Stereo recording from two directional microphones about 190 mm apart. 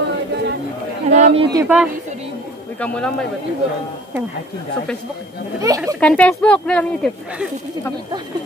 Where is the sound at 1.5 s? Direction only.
15° right (ahead or behind).